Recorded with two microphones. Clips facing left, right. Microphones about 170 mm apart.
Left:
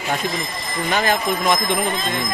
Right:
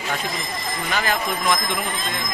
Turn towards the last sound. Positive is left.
turn(degrees=25)  # may be behind; listen again after turning